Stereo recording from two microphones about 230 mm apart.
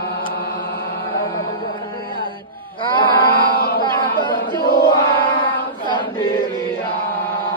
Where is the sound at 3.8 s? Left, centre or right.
Left.